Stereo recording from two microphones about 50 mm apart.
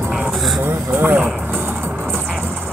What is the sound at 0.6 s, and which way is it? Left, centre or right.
Speech, right.